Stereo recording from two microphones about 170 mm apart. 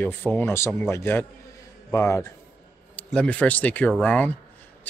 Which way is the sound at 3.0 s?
5° left (ahead or behind).